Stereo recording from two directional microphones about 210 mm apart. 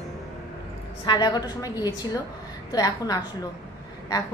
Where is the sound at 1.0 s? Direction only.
20° left (ahead or behind).